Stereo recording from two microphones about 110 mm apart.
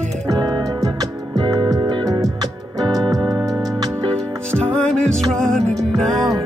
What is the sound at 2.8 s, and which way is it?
Keyboard, 40° right (ahead or behind).